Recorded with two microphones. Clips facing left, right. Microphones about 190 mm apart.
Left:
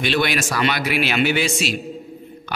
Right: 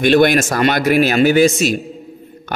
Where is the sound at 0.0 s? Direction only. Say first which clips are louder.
Right 9 dB; 50° right (ahead or behind).